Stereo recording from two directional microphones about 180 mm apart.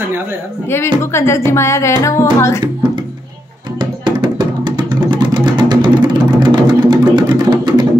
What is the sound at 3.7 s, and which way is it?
Music, 25° right (ahead or behind).